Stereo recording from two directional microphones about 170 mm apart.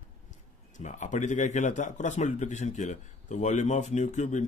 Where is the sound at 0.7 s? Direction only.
45° left (ahead or behind).